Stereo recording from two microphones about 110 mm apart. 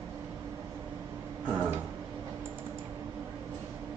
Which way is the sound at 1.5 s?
15° right (ahead or behind).